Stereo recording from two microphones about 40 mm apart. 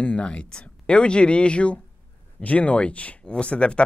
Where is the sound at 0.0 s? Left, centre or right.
Left.